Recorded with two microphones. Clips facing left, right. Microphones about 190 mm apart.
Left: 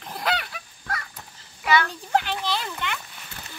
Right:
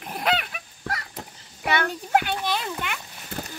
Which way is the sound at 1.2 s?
50° right (ahead or behind).